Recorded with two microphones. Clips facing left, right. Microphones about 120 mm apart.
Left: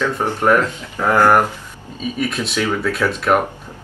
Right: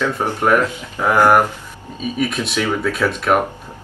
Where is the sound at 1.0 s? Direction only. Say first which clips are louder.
Even; 15° right (ahead or behind).